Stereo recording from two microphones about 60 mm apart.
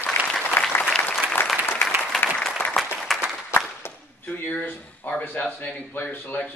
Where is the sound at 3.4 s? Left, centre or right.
Left.